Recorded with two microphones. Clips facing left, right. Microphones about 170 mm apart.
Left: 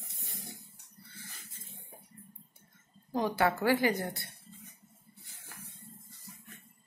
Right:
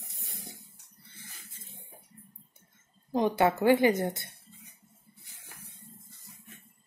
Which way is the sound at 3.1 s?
20° right (ahead or behind).